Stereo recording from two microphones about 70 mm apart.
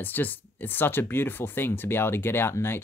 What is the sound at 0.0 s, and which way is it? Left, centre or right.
Speech, left.